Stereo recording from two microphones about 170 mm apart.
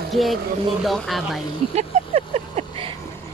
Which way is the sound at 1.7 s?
40° right (ahead or behind).